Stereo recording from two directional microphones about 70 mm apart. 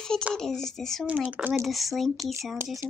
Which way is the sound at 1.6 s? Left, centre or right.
Centre.